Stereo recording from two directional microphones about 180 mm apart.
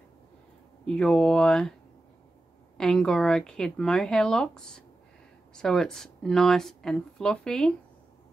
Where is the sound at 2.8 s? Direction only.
5° left (ahead or behind).